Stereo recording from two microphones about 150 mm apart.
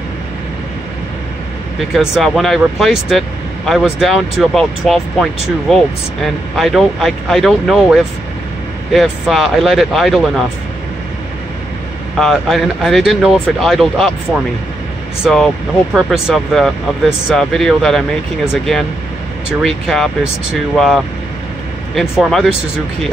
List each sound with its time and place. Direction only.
2.0 s speech: centre (ahead or behind)
12.2 s speech: centre (ahead or behind)
15.2 s speech: centre (ahead or behind)
19.6 s speech: centre (ahead or behind)